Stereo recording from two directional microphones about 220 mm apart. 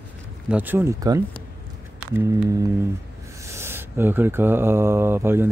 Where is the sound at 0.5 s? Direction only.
10° right (ahead or behind).